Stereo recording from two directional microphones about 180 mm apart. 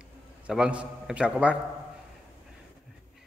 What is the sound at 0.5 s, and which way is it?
A man's voice, 5° right (ahead or behind).